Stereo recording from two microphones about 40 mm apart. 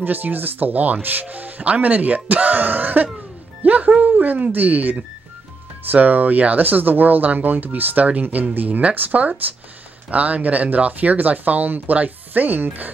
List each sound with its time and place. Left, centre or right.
0.0 s speech: right
3.6 s music: right
5.9 s speech: right